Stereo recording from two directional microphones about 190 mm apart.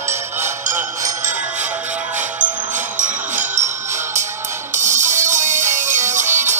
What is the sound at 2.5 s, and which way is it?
Music, 40° right (ahead or behind).